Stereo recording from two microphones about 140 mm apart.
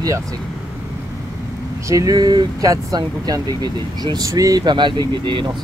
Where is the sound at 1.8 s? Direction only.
25° right (ahead or behind).